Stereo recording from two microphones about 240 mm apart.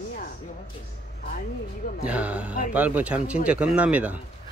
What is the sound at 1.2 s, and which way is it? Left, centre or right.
Speech, left.